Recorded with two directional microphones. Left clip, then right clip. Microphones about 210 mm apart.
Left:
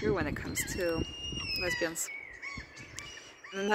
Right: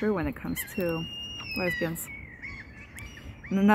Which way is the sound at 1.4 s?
10° right (ahead or behind).